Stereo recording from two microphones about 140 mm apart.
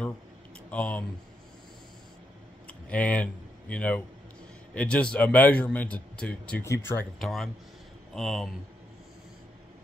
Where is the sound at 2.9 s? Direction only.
10° left (ahead or behind).